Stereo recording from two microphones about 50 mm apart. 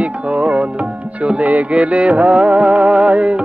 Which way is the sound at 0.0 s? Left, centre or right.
Right.